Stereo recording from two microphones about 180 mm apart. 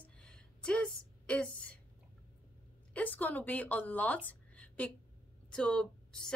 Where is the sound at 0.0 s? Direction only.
5° left (ahead or behind).